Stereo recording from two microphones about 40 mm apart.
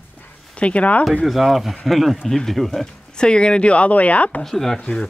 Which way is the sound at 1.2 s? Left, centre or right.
Centre.